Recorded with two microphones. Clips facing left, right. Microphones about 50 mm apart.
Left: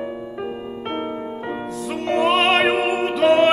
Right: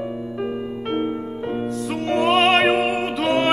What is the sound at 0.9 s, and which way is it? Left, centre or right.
Music, centre.